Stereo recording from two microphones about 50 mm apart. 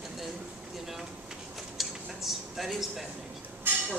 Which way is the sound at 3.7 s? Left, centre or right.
Right.